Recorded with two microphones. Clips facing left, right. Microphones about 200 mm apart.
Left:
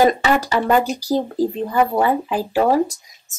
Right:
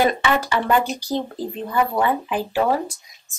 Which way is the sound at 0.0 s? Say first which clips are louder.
Left 4 dB; 40° left (ahead or behind).